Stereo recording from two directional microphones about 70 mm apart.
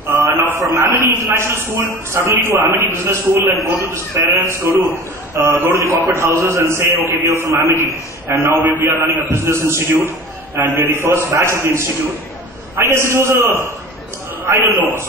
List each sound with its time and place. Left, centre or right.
0.2 s a sound: right
0.6 s a man's voice: right
1.2 s a man's voice: right